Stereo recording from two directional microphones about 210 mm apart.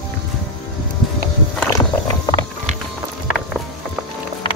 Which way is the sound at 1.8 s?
20° left (ahead or behind).